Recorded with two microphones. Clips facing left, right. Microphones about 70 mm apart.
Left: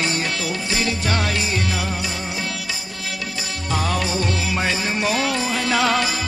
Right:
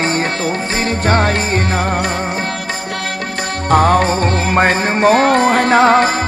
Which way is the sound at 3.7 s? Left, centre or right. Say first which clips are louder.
Right 11 dB; right.